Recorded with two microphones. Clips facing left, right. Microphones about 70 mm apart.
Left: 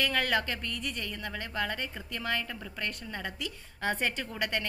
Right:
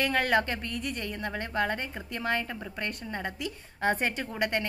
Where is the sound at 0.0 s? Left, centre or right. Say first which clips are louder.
Right 3 dB; right.